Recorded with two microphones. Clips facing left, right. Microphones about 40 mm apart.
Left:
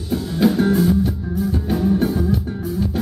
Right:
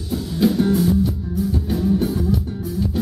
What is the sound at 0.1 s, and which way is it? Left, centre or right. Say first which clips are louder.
Music: left 2 dB; centre.